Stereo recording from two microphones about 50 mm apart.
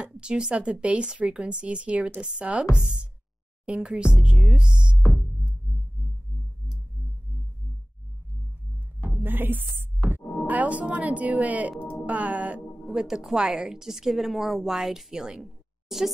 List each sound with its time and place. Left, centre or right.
0.0 s a woman's voice: centre
2.8 s music: centre
3.6 s a woman's voice: right
9.2 s music: right
12.8 s a woman's voice: centre